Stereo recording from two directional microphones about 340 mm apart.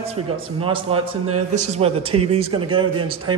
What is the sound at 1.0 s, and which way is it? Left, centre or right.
Speech, right.